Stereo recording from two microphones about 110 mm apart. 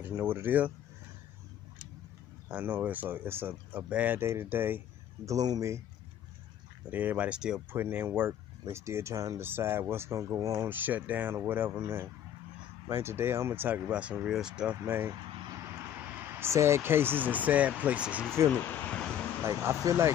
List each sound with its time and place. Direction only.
0.0 s speech: 20° right (ahead or behind)
2.4 s speech: 15° right (ahead or behind)
5.3 s speech: 35° right (ahead or behind)
6.9 s speech: 15° right (ahead or behind)
7.7 s speech: 20° right (ahead or behind)
14.9 s speech: 20° right (ahead or behind)
16.3 s speech: 25° right (ahead or behind)
18.5 s a sound: 15° left (ahead or behind)
19.4 s speech: 25° right (ahead or behind)